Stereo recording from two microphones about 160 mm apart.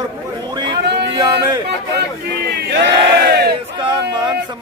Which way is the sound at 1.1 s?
25° right (ahead or behind).